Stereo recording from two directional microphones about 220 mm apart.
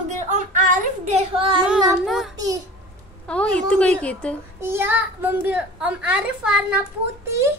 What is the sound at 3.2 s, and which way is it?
A child's voice, 5° left (ahead or behind).